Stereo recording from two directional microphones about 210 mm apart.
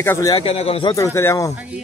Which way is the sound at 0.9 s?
15° left (ahead or behind).